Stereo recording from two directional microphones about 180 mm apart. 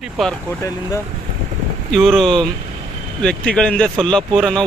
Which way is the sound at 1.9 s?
Centre (ahead or behind).